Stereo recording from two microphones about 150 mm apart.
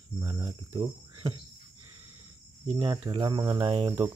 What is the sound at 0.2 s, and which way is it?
Cricket, 30° right (ahead or behind).